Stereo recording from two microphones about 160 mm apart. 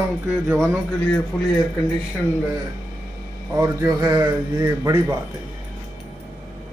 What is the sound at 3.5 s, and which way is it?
Speech, 20° right (ahead or behind).